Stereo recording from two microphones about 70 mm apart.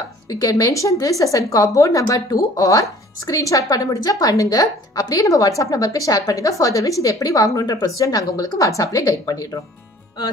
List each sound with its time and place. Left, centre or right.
0.3 s speech: left